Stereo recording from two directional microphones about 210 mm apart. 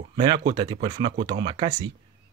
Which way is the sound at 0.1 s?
25° right (ahead or behind).